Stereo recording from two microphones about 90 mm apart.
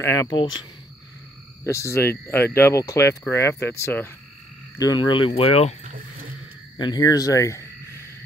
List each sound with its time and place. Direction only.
0.0 s speech: 30° left (ahead or behind)
0.3 s speech: 60° left (ahead or behind)
1.6 s speech: 35° left (ahead or behind)
4.7 s speech: 50° left (ahead or behind); by 5.6 s 90° left
6.8 s speech: 45° left (ahead or behind)